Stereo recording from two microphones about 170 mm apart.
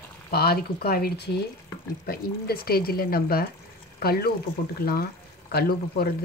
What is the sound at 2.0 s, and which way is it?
Speech, 65° left (ahead or behind).